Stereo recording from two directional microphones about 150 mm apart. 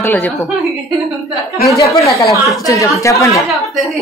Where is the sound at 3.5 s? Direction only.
Centre (ahead or behind).